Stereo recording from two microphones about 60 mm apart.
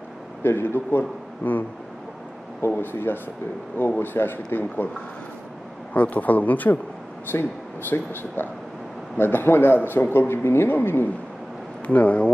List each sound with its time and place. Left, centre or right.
0.4 s a man's voice: left
2.7 s speech: left
5.9 s speech: left
7.3 s speech: left
7.9 s speech: left
11.9 s speech: left